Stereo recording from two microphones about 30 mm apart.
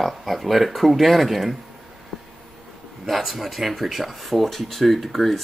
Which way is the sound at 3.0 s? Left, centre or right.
Centre.